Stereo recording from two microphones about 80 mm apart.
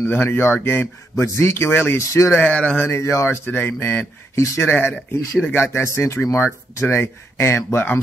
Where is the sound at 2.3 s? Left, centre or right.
Centre.